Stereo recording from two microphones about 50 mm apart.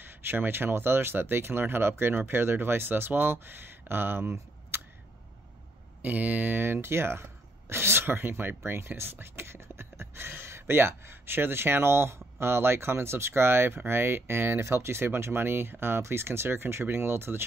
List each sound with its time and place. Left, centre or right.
0.0 s speech: right
6.0 s speech: right
6.6 s speech: right